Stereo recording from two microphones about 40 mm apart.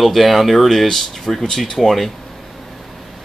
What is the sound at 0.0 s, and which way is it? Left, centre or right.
Speech, centre.